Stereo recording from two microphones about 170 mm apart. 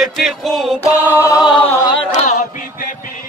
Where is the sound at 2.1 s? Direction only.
45° left (ahead or behind).